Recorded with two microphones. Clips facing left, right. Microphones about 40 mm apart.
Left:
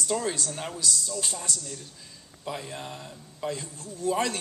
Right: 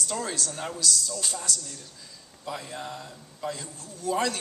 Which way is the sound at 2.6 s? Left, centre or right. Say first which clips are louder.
Right 1 dB; left.